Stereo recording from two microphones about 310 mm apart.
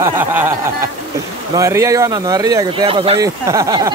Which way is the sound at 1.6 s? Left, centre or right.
Centre.